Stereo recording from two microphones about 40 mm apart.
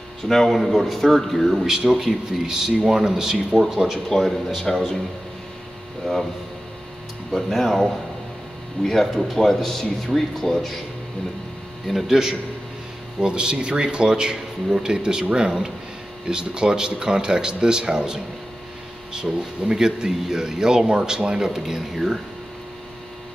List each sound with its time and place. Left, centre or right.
0.6 s speech: centre
1.7 s speech: centre
2.4 s speech: centre
7.3 s speech: centre
8.8 s speech: centre
11.9 s speech: centre
13.2 s speech: right
21.5 s speech: centre